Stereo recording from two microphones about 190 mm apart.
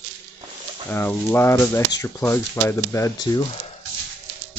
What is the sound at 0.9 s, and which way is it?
Speech, 10° left (ahead or behind).